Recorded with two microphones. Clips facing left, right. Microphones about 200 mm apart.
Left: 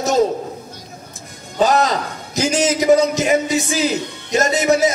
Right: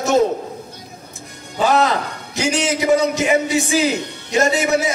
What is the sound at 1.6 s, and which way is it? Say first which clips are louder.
A man's voice: left 1 dB; 40° left (ahead or behind).